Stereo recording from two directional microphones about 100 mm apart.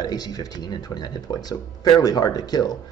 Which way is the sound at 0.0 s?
40° left (ahead or behind).